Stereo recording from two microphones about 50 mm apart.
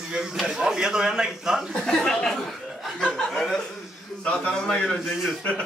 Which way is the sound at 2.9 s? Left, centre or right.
Centre.